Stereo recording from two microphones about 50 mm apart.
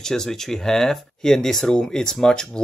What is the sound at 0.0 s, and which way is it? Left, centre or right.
Speech, centre.